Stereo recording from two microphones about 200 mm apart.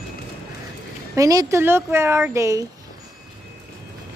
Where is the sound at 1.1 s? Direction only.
15° right (ahead or behind).